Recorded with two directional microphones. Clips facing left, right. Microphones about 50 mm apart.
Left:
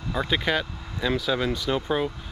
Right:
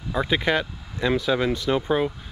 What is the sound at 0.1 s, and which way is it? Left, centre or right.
Speech, centre.